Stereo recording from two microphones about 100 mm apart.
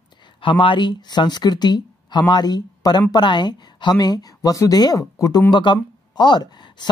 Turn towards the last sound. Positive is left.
turn(degrees=45)  # may be behind; listen again after turning